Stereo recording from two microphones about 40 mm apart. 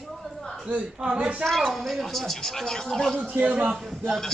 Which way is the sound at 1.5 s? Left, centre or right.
Centre.